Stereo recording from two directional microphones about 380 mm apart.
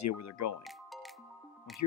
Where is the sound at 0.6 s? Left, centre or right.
Centre.